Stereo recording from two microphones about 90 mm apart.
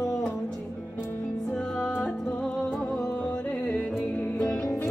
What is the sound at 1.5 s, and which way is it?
Music, 10° left (ahead or behind).